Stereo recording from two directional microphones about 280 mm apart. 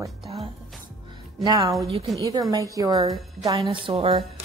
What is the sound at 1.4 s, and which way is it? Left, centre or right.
Speech, centre.